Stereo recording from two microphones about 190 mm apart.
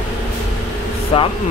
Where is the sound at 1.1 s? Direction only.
30° left (ahead or behind).